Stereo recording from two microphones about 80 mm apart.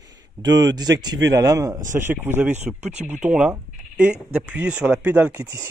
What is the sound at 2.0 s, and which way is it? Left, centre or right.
Speech, right.